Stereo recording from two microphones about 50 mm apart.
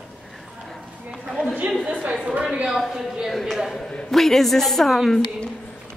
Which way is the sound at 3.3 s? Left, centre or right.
Centre.